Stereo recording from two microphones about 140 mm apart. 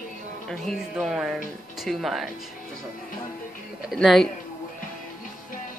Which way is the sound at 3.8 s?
Centre (ahead or behind).